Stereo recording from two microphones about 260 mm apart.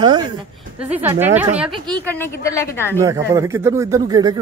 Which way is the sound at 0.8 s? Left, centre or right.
Centre.